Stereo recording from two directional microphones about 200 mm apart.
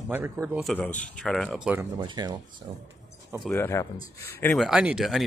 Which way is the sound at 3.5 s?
15° left (ahead or behind).